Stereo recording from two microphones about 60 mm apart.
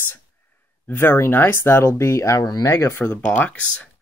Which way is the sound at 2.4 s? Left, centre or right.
Left.